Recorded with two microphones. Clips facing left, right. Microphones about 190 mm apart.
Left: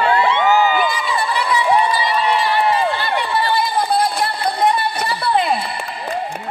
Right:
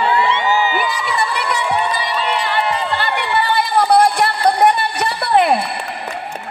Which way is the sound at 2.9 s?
65° right (ahead or behind).